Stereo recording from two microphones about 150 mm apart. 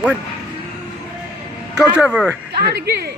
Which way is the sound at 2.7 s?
90° right.